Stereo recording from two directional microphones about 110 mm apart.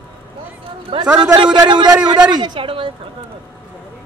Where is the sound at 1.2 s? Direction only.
40° right (ahead or behind).